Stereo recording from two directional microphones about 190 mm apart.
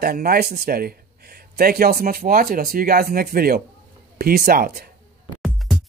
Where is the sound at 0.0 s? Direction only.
50° right (ahead or behind).